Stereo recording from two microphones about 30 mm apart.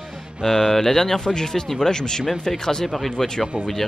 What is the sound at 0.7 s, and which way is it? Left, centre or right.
Speech, centre.